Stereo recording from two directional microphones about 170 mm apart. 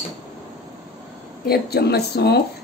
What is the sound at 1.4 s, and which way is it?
Speech, 70° left (ahead or behind).